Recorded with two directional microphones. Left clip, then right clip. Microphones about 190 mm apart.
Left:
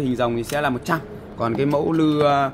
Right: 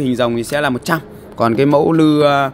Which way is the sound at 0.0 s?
45° right (ahead or behind).